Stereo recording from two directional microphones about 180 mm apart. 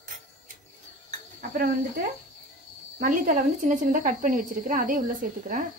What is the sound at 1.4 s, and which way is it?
Speech, 50° right (ahead or behind).